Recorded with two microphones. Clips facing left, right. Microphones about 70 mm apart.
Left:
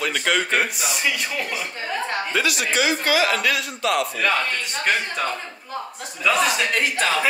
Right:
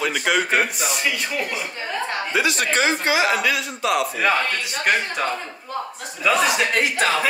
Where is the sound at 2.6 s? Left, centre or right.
Right.